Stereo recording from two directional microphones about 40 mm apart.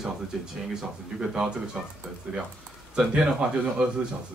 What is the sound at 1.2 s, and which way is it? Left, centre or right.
Speech, right.